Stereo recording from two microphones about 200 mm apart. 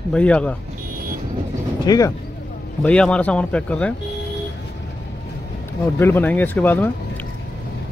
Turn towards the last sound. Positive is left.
turn(degrees=10)  # may be behind; listen again after turning